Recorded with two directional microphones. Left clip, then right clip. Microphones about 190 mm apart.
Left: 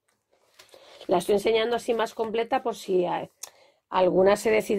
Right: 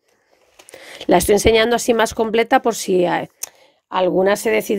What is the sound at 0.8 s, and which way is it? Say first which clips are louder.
Speech: right 10 dB; 50° right (ahead or behind).